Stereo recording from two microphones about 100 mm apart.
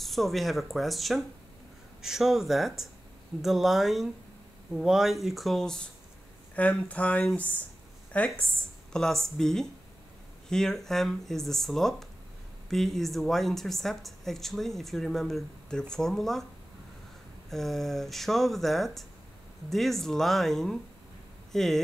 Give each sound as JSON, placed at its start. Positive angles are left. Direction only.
{"t": 0.0, "sound": "speech", "side_deg": 0}
{"t": 17.5, "sound": "speech", "side_deg": 5}